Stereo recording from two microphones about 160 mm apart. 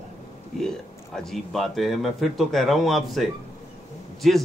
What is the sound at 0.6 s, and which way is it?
A man's voice, 5° left (ahead or behind).